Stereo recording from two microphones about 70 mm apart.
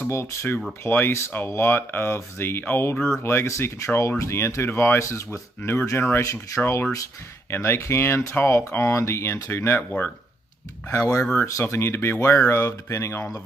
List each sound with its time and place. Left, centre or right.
0.0 s speech: left
10.9 s speech: left